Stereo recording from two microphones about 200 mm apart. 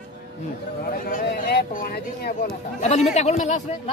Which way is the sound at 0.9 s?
45° left (ahead or behind).